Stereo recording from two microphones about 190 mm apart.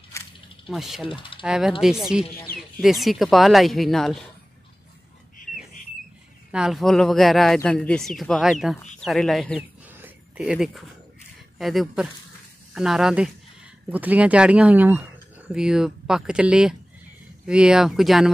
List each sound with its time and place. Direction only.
0.1 s snake: 15° left (ahead or behind)
0.7 s speech: centre (ahead or behind)
1.0 s speech: 25° left (ahead or behind)
1.4 s speech: 5° right (ahead or behind)
6.5 s speech: centre (ahead or behind)
9.8 s a sound: 10° right (ahead or behind)
11.5 s speech: centre (ahead or behind)